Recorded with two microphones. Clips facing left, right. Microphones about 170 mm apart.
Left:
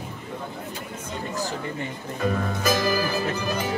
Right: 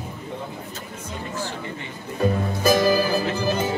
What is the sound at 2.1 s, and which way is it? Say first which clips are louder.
Music: right 3 dB; 30° right (ahead or behind).